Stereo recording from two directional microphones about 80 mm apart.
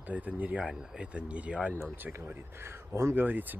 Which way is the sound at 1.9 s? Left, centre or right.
Right.